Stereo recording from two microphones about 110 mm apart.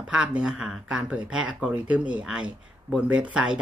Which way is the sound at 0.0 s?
10° right (ahead or behind).